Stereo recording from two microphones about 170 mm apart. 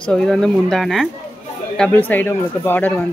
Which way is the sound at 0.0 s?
5° left (ahead or behind).